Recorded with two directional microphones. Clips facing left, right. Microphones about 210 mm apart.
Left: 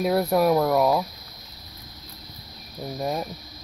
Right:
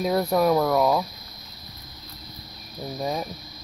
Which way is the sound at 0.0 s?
5° left (ahead or behind).